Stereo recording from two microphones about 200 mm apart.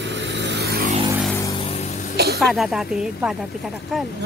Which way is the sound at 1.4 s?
25° left (ahead or behind).